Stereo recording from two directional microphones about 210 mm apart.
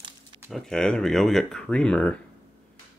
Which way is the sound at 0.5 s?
5° left (ahead or behind).